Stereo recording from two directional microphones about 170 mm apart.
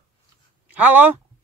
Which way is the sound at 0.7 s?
10° right (ahead or behind).